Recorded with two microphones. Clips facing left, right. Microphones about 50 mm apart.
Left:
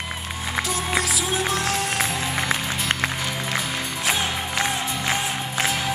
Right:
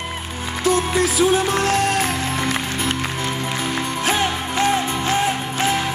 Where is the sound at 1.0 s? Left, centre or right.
Right.